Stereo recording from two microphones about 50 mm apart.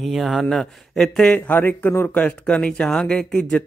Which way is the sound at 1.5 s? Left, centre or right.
Left.